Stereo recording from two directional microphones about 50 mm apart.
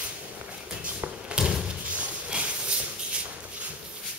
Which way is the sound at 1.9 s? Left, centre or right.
Right.